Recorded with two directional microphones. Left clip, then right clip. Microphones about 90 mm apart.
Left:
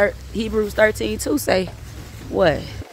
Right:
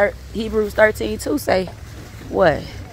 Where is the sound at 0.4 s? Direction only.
35° left (ahead or behind).